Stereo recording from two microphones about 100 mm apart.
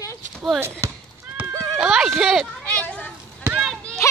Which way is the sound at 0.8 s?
30° right (ahead or behind).